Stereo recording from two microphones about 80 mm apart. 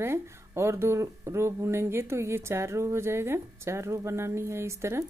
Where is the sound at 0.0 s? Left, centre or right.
Right.